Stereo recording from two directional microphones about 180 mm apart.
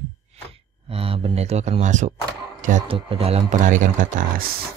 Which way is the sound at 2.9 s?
30° right (ahead or behind).